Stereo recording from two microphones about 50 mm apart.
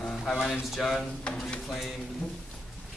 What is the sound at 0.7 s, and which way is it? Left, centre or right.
Speech, centre.